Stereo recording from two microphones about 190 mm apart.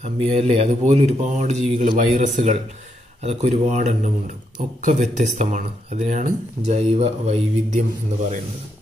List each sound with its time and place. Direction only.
0.0 s speech: 35° right (ahead or behind)